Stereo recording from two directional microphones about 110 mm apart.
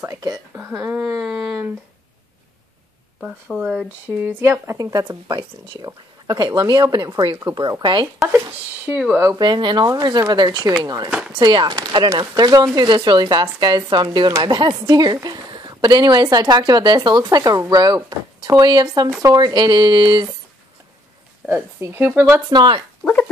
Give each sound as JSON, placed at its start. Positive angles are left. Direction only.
{"t": 0.1, "sound": "speech", "side_deg": -35}
{"t": 0.6, "sound": "speech", "side_deg": -15}
{"t": 3.2, "sound": "speech", "side_deg": -10}
{"t": 4.4, "sound": "speech", "side_deg": -25}
{"t": 4.9, "sound": "speech", "side_deg": -45}
{"t": 8.3, "sound": "speech", "side_deg": -15}
{"t": 9.4, "sound": "speech", "side_deg": -45}
{"t": 11.1, "sound": "speech", "side_deg": -10}
{"t": 11.3, "sound": "speech", "side_deg": -40}
{"t": 21.4, "sound": "speech", "side_deg": -10}
{"t": 21.7, "sound": "speech", "side_deg": -20}
{"t": 22.5, "sound": "speech", "side_deg": -40}